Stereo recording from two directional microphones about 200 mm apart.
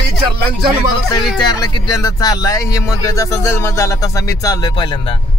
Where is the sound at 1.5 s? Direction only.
20° left (ahead or behind).